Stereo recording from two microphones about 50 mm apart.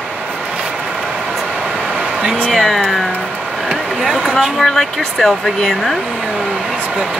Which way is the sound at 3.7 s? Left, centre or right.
Centre.